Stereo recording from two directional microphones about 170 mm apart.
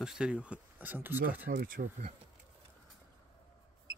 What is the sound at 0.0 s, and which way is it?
Speech, 5° right (ahead or behind).